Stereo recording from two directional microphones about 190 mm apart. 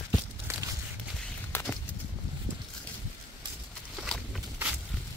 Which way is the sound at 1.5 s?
10° left (ahead or behind).